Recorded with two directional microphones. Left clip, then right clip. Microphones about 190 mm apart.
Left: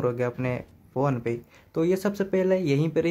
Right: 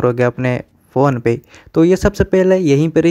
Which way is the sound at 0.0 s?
45° right (ahead or behind).